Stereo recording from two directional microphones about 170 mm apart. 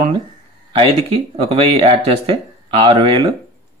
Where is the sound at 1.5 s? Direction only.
35° right (ahead or behind).